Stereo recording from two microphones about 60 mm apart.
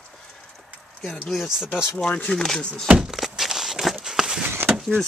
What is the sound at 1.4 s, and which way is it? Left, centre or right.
Speech, centre.